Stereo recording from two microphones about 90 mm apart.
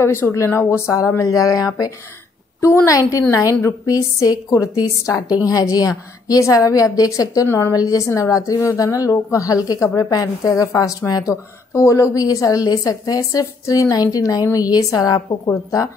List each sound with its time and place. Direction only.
0.0 s a woman's voice: 25° left (ahead or behind)
2.6 s a woman's voice: 30° left (ahead or behind)